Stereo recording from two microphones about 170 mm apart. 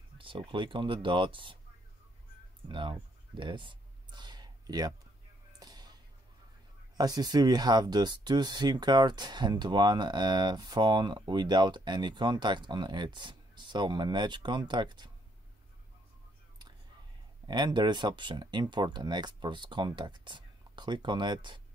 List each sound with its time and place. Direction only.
0.2 s speech: 30° right (ahead or behind)
2.7 s a sound: 30° right (ahead or behind)
7.0 s speech: 25° right (ahead or behind)
17.5 s speech: 25° right (ahead or behind)